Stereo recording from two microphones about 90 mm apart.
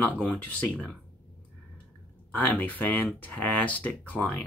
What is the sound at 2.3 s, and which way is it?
Speech, 20° left (ahead or behind).